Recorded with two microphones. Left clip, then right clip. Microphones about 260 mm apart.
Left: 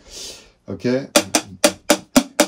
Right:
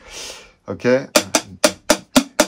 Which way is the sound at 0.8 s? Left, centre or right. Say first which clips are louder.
Right 5 dB; centre.